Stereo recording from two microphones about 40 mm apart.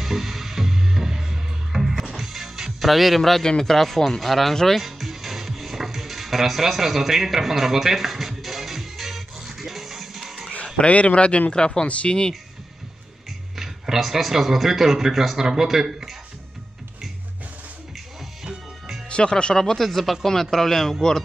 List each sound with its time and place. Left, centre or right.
0.0 s music: centre
3.2 s speech: centre
4.8 s music: centre
10.8 s speech: left
13.6 s a man's voice: centre
18.4 s music: right
19.0 s speech: left
19.8 s speech: centre